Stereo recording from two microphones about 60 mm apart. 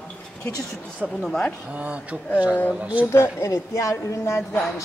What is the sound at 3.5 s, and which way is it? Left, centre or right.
Speech, left.